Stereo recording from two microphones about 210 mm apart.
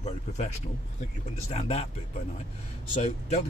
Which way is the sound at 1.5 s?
25° left (ahead or behind).